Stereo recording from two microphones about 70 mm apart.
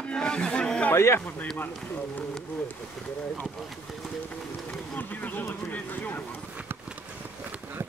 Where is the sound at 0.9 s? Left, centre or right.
Left.